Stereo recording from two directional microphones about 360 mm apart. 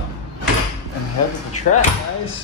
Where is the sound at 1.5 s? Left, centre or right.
Left.